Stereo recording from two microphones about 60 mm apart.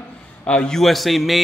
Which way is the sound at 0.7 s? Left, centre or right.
Centre.